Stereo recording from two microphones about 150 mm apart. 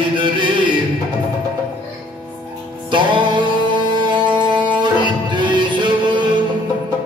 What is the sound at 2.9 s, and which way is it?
Music, 30° right (ahead or behind).